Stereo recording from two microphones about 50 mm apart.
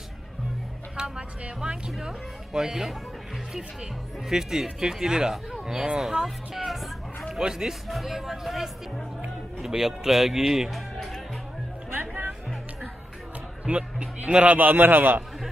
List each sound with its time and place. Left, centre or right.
0.9 s a sound: centre
2.0 s speech: centre
4.3 s speech: centre
13.7 s a man's voice: right